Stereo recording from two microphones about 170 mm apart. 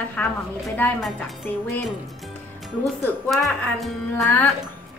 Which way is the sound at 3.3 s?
Centre (ahead or behind).